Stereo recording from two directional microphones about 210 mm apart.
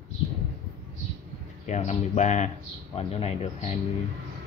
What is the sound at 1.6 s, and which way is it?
Speech, 35° left (ahead or behind).